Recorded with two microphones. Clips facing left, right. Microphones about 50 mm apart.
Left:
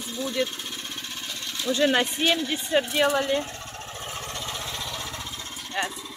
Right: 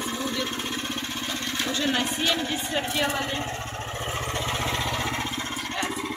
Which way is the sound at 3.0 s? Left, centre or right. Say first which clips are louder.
Left 4 dB; right.